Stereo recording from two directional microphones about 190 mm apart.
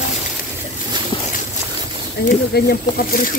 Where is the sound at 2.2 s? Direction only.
60° left (ahead or behind).